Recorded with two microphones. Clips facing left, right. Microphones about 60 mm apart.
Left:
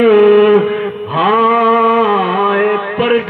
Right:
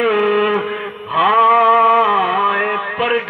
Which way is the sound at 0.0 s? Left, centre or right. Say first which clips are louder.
Left 8 dB; right.